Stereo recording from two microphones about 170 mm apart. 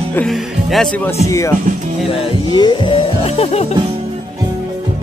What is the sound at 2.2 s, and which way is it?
Music, 30° left (ahead or behind).